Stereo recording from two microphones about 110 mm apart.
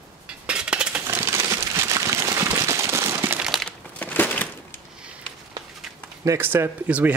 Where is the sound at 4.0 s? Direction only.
15° left (ahead or behind).